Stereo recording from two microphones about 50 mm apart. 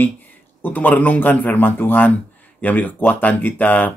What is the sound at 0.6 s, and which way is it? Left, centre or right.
Speech, left.